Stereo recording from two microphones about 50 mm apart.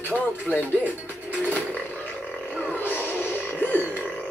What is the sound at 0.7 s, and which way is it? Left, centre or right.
Speech, right.